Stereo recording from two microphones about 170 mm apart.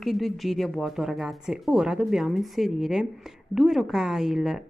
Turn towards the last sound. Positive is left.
turn(degrees=0)  # may be behind; listen again after turning